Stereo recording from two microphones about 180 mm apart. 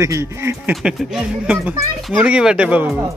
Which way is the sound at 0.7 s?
Centre (ahead or behind).